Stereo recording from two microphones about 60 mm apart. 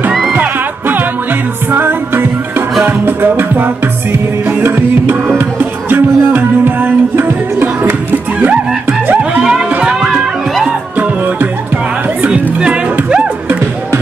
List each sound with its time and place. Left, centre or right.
0.3 s music: right
9.8 s music: centre
12.3 s music: centre